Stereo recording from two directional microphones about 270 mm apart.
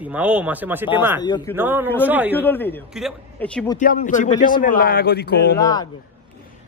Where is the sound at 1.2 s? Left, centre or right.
Centre.